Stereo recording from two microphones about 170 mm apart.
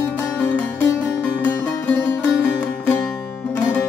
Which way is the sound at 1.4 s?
20° left (ahead or behind).